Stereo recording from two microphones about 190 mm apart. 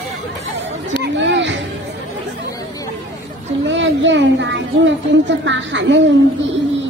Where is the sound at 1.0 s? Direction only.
70° right (ahead or behind).